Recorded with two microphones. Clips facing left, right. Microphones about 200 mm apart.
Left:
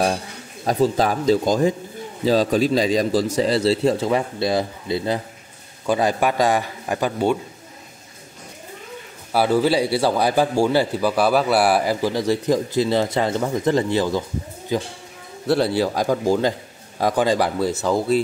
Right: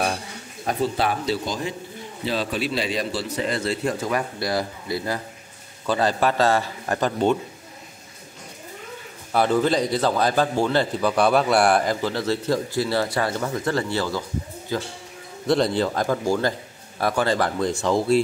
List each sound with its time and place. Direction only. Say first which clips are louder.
0.7 s a man's voice: left 5 dB; 40° left (ahead or behind); by 7.3 s 10° left (ahead or behind)
9.3 s a man's voice: left 2 dB; 5° left (ahead or behind)